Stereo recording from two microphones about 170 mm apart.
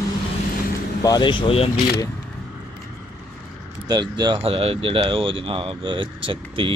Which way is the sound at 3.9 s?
25° right (ahead or behind).